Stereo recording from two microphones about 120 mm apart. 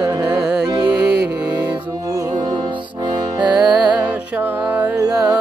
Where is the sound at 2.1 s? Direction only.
30° right (ahead or behind).